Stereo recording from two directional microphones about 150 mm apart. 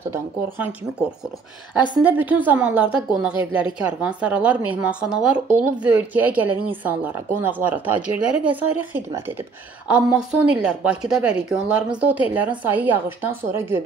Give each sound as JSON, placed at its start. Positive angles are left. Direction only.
{"t": 0.0, "sound": "speech", "side_deg": -15}
{"t": 1.7, "sound": "speech", "side_deg": -10}